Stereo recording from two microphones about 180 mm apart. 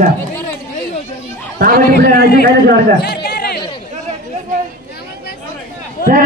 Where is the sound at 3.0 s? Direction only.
65° left (ahead or behind).